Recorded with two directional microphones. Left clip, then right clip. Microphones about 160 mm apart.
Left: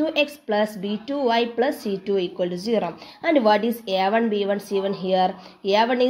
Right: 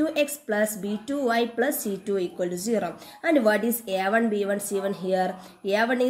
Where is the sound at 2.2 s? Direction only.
15° left (ahead or behind).